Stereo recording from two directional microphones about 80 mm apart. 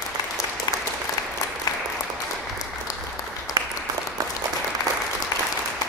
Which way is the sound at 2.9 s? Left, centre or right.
Left.